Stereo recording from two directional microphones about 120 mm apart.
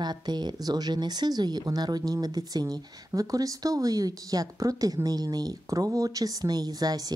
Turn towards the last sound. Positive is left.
turn(degrees=-35)  # may be behind; listen again after turning